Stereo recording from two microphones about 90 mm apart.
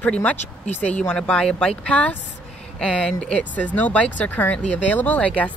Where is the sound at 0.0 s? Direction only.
15° left (ahead or behind).